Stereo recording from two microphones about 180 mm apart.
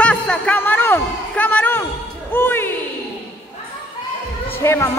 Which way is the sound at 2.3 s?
10° left (ahead or behind).